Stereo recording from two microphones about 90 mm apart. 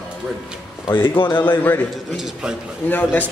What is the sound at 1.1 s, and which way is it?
Speech, 70° left (ahead or behind).